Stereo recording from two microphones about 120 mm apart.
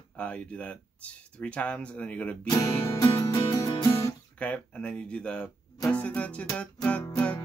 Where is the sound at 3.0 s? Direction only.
35° left (ahead or behind).